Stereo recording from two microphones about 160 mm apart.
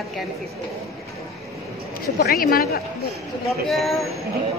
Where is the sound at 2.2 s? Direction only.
70° left (ahead or behind).